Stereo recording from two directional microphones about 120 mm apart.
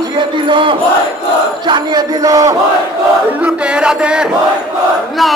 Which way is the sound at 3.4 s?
10° right (ahead or behind).